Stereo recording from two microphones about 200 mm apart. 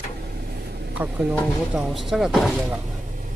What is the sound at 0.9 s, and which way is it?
Speech, 5° right (ahead or behind).